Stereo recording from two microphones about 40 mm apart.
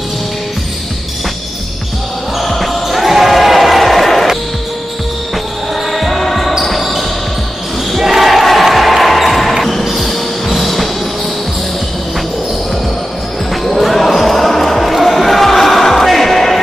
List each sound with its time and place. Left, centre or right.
2.3 s basketball bounce: centre
5.9 s basketball bounce: centre
13.5 s basketball bounce: centre